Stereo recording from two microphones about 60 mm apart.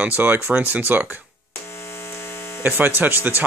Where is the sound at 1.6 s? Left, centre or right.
Left.